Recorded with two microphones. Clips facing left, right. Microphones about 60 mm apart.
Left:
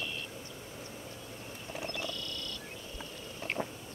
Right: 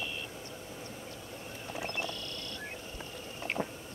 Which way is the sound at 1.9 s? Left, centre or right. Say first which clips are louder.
Right 1 dB; right.